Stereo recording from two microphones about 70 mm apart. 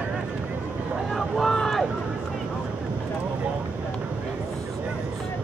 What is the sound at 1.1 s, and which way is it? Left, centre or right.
Vehicle, centre.